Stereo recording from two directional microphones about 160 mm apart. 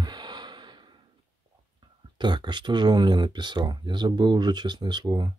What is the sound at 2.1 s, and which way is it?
Speech, 30° right (ahead or behind).